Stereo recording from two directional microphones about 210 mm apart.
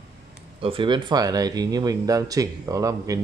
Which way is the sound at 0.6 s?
25° right (ahead or behind).